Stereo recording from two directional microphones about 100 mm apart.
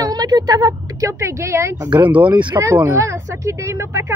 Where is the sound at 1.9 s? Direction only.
15° right (ahead or behind).